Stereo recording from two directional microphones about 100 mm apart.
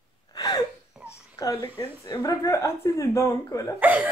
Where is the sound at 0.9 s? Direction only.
10° right (ahead or behind).